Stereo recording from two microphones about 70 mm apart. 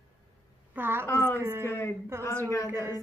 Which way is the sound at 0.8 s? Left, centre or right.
Right.